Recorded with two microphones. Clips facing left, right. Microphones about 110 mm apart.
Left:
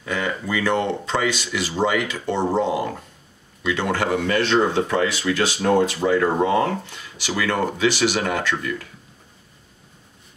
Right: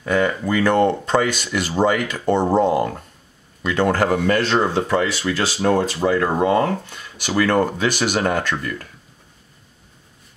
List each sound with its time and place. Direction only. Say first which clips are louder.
0.0 s speech: right 6 dB; 50° right (ahead or behind)
7.2 s speech: right 5 dB; 50° right (ahead or behind)